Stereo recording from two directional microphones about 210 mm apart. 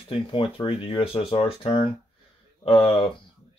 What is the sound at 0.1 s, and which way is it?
Speech, 25° left (ahead or behind).